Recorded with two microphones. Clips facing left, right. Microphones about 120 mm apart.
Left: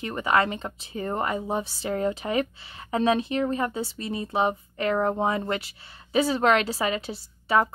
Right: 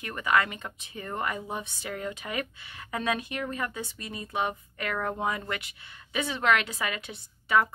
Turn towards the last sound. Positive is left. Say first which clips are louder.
# left 2 dB
turn(degrees=35)  # may be behind; listen again after turning